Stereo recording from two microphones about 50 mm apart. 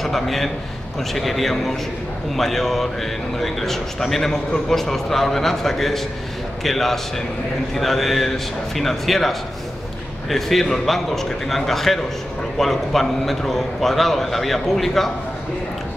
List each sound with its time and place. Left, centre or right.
0.0 s a man's voice: centre